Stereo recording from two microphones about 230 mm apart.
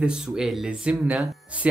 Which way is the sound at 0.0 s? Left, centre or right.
Centre.